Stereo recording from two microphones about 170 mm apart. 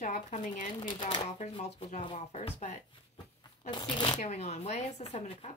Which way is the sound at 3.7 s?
25° left (ahead or behind).